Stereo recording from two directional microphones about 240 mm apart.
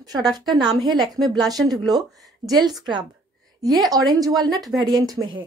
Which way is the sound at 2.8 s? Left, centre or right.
Centre.